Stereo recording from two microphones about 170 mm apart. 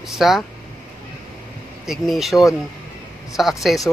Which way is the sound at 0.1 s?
Centre (ahead or behind).